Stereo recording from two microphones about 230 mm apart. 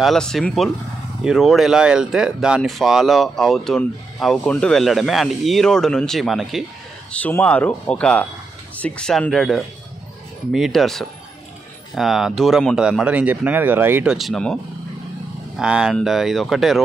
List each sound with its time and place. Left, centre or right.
0.0 s speech: centre